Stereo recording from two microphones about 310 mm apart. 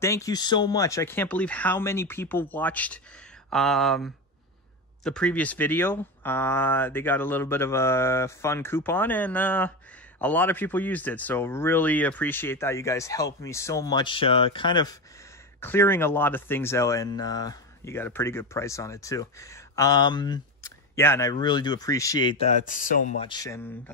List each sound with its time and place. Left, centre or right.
0.0 s speech: centre
22.7 s speech: left; by 23.7 s centre